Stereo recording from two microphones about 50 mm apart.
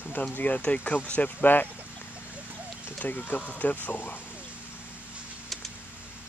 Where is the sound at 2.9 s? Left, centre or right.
Left.